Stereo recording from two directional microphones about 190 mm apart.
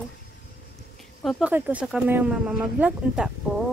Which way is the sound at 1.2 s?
5° right (ahead or behind).